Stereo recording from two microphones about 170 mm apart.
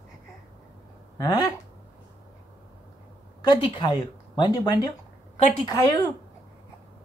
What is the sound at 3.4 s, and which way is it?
Speech, 25° left (ahead or behind).